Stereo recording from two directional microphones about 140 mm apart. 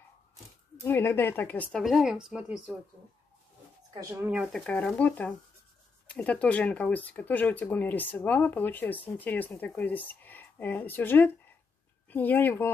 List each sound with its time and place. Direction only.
0.8 s speech: 15° left (ahead or behind); by 2.7 s 5° right (ahead or behind)
4.1 s speech: 15° right (ahead or behind)
4.4 s speech: 5° left (ahead or behind)